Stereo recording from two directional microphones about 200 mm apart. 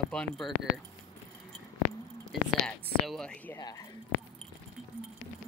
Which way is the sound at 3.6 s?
15° left (ahead or behind).